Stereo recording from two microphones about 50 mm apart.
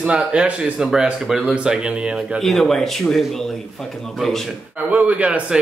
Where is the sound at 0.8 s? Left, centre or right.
Centre.